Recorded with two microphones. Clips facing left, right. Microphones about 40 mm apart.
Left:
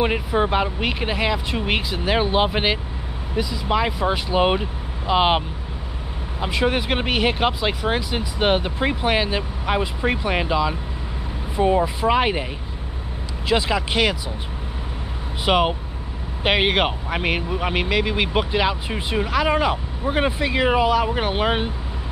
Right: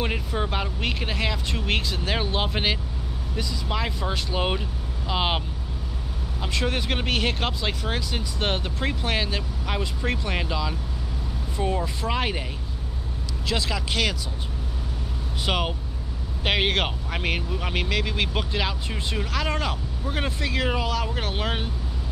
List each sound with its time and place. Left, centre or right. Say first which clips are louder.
0.0 s speech: left 7 dB; centre
6.4 s speech: left 6 dB; centre
13.5 s speech: left 7 dB; left
15.4 s speech: left 8 dB; centre